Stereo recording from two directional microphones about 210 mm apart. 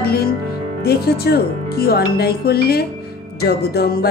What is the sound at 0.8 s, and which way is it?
Music, 50° left (ahead or behind).